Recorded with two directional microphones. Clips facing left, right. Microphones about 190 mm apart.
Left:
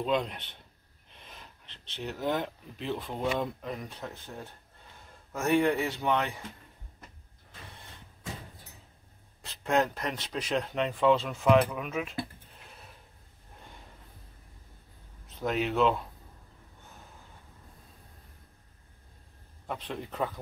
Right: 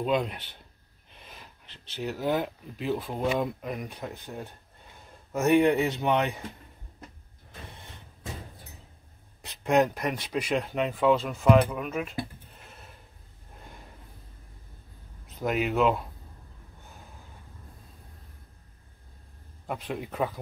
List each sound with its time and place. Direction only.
0.0 s speech: 5° right (ahead or behind)
9.4 s speech: 15° right (ahead or behind); by 12.2 s centre (ahead or behind)
15.4 s speech: 10° right (ahead or behind)
19.7 s speech: 10° right (ahead or behind)